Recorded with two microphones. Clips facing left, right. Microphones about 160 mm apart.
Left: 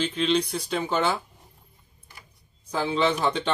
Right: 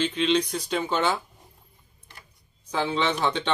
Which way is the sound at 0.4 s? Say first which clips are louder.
Even; 10° left (ahead or behind).